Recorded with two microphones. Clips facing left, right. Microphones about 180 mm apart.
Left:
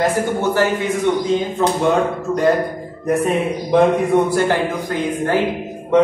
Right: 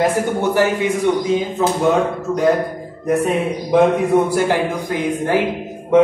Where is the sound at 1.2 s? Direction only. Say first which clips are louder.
Even; 5° right (ahead or behind).